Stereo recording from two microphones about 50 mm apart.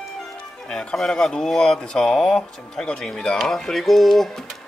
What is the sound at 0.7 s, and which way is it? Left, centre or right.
Speech, centre.